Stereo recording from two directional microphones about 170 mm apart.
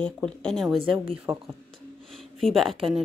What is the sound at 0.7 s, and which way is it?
Speech, 30° right (ahead or behind).